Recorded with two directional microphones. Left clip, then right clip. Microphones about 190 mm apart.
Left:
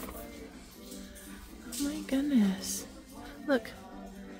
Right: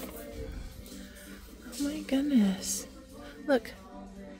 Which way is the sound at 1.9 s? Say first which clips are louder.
Right 2 dB; 10° right (ahead or behind).